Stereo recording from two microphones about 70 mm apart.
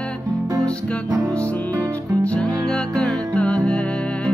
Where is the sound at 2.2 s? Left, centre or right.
Centre.